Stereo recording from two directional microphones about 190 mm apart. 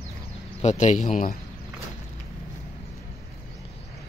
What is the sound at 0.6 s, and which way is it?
Speech, 35° left (ahead or behind).